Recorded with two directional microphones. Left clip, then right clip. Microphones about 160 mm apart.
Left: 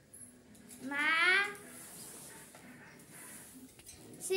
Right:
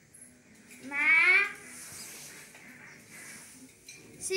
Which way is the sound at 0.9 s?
35° left (ahead or behind).